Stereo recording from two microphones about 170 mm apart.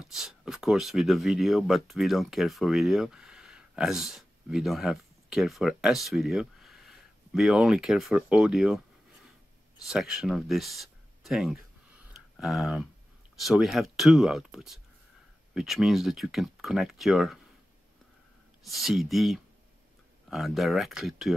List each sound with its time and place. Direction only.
0.0 s speech: 5° right (ahead or behind)
9.8 s speech: 5° right (ahead or behind)
12.1 s a sound: 5° right (ahead or behind)
13.4 s speech: centre (ahead or behind)
18.6 s speech: centre (ahead or behind)